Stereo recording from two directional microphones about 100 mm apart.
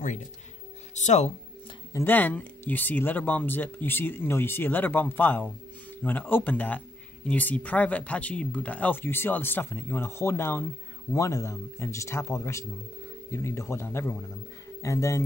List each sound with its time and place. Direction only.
2.0 s speech: 15° left (ahead or behind)
14.8 s speech: 30° left (ahead or behind)